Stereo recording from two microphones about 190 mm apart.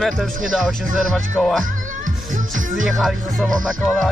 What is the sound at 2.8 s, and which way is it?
Music, centre (ahead or behind).